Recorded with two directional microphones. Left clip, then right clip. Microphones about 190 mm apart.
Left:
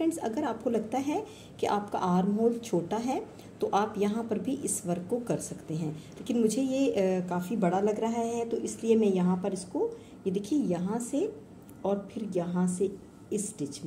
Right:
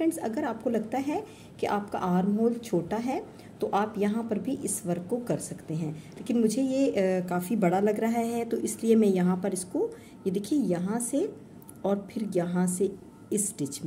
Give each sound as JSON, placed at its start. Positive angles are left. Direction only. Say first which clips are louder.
{"t": 0.0, "sound": "a woman's voice", "louder": "right 1 dB", "side_deg": -10}
{"t": 11.8, "sound": "a woman's voice", "louder": "right 2 dB", "side_deg": -25}